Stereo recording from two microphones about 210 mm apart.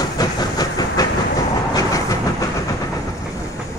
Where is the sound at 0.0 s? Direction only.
20° left (ahead or behind).